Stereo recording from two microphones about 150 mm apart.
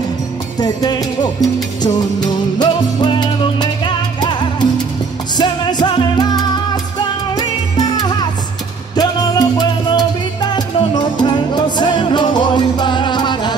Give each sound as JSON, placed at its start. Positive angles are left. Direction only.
{"t": 0.6, "sound": "music", "side_deg": 25}
{"t": 2.6, "sound": "music", "side_deg": 30}
{"t": 8.9, "sound": "music", "side_deg": 25}